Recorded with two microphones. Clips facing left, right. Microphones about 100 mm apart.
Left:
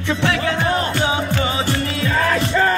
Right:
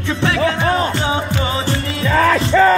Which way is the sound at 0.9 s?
30° right (ahead or behind).